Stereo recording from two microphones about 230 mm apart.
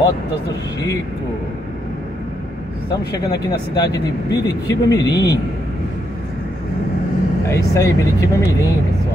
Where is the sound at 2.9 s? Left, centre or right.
Centre.